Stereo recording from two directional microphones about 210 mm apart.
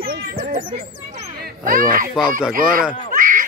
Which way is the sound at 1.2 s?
40° right (ahead or behind).